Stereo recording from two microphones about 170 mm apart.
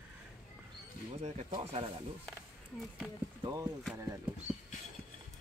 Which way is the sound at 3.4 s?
20° right (ahead or behind).